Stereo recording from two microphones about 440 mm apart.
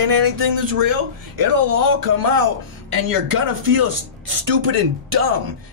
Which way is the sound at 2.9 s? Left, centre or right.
Right.